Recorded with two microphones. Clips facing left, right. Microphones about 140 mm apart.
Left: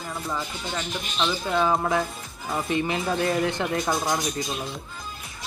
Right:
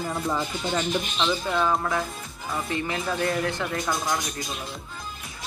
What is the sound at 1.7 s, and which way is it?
Speech, 20° left (ahead or behind).